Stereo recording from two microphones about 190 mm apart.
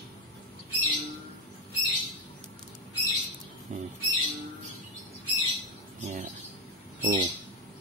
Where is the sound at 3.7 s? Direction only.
40° right (ahead or behind).